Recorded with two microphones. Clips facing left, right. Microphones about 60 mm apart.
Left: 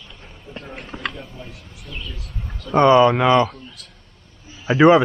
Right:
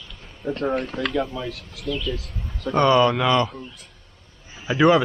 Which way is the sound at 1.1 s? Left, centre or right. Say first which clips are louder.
Right 11 dB; right.